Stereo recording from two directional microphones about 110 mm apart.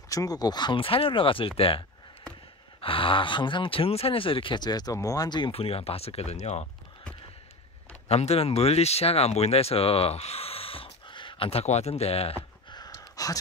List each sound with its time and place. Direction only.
0.1 s speech: 35° left (ahead or behind)
5.5 s speech: 60° left (ahead or behind); by 6.7 s 90° left
8.1 s speech: 70° left (ahead or behind); by 11.6 s 55° left (ahead or behind)
11.6 s speech: 80° left; by 12.4 s 65° left (ahead or behind)
12.6 s a sound: 40° left (ahead or behind)